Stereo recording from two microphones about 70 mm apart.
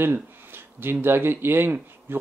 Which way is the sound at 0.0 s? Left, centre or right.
Right.